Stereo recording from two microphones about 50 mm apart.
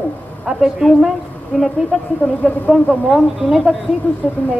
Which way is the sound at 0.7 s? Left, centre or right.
Centre.